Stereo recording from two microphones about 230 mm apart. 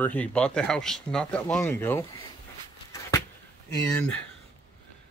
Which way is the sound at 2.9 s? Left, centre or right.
Centre.